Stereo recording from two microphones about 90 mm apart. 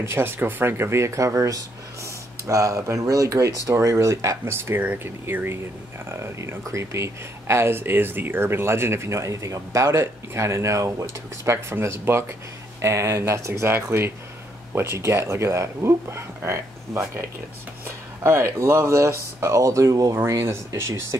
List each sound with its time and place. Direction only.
0.0 s speech: 25° right (ahead or behind)
18.2 s speech: 30° right (ahead or behind)
20.2 s speech: 30° right (ahead or behind)